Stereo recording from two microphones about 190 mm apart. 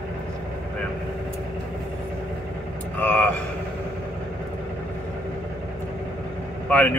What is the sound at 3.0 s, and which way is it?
Speech, 10° left (ahead or behind).